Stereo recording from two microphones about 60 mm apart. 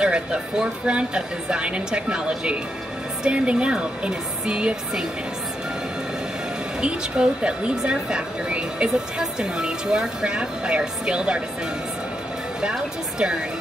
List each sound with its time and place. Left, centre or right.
0.0 s a woman's voice: centre
6.8 s a woman's voice: centre
12.5 s a woman's voice: centre